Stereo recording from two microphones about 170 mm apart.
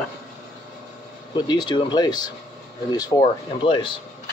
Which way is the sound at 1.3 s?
25° left (ahead or behind).